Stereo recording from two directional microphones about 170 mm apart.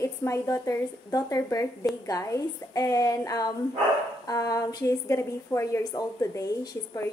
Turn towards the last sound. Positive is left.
turn(degrees=20)  # may be behind; listen again after turning